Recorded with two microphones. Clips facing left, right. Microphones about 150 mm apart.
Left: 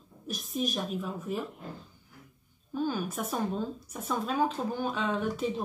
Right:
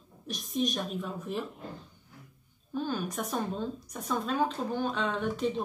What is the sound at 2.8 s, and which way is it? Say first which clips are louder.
Speech: left 1 dB; 5° left (ahead or behind).